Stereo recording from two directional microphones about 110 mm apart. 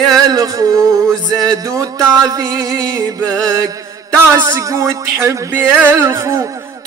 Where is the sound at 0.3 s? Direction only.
35° right (ahead or behind).